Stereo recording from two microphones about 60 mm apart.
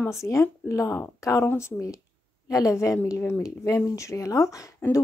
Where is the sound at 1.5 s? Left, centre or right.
Left.